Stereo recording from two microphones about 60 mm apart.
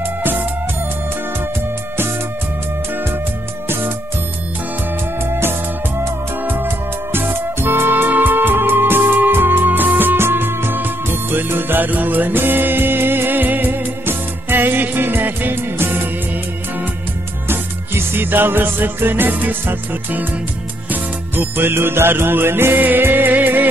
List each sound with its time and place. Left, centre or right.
0.0 s music: right
2.9 s music: right
5.2 s music: right
17.5 s music: right